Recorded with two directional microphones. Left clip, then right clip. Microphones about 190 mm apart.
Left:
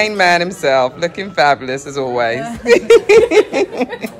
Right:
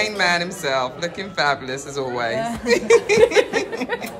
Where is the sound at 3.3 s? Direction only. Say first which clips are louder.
Left 6 dB; 10° right (ahead or behind).